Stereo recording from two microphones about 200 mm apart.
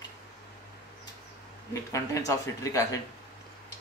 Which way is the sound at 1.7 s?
15° left (ahead or behind).